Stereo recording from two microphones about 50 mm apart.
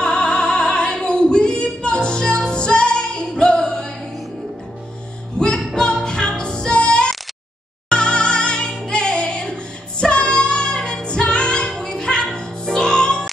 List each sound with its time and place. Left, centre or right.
0.0 s opera: centre
5.4 s music: centre
11.7 s music: centre